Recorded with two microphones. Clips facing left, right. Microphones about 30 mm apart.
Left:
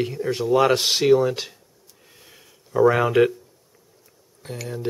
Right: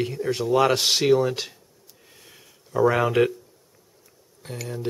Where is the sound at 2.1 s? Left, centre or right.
Centre.